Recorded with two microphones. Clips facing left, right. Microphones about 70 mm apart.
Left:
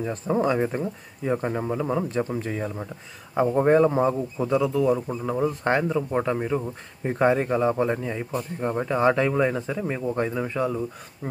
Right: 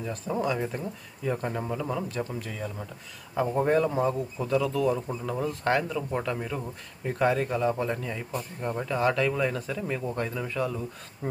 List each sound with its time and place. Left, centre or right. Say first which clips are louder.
0.0 s speech: left 6 dB; left